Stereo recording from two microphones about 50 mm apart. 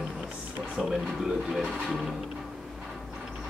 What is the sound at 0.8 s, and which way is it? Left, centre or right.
Speech, centre.